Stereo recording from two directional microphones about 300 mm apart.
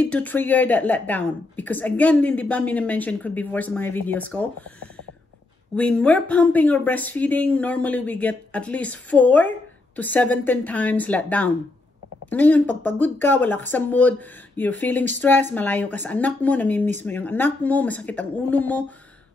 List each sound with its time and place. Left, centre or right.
0.0 s speech: centre
5.8 s speech: centre